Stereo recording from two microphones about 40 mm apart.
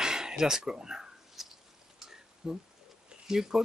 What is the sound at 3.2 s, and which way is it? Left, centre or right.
Speech, centre.